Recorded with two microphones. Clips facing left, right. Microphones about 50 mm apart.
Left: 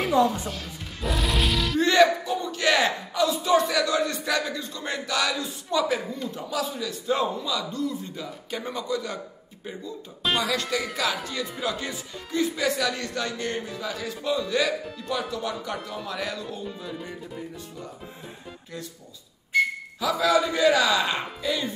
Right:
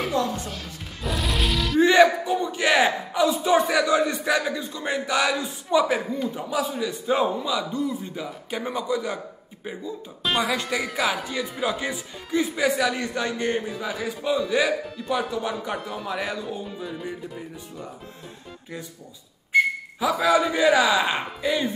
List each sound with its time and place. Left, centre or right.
0.1 s music: centre
1.8 s music: centre
2.2 s a man's voice: centre
10.2 s a man's voice: centre
16.6 s music: centre
19.5 s a man's voice: centre